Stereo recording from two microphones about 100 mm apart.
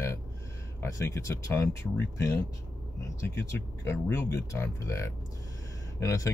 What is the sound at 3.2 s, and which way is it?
Speech, 25° left (ahead or behind).